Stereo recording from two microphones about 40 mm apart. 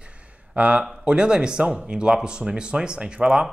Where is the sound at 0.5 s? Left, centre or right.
Right.